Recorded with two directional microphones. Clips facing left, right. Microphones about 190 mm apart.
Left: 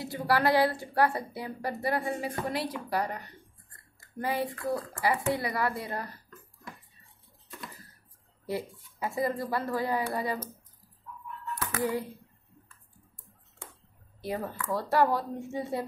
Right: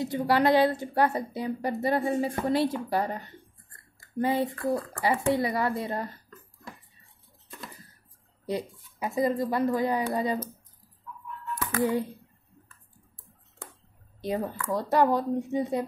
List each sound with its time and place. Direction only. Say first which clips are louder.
0.0 s a woman's voice: right 3 dB; 20° right (ahead or behind)
8.5 s a woman's voice: right 2 dB; 20° right (ahead or behind)
14.2 s a woman's voice: right 4 dB; 20° right (ahead or behind)